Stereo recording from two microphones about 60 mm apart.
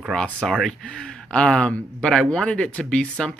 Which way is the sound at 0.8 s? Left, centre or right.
Centre.